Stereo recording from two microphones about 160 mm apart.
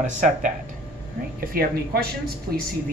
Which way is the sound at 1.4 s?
70° right (ahead or behind).